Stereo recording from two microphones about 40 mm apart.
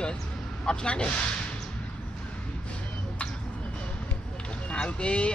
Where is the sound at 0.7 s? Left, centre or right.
Left.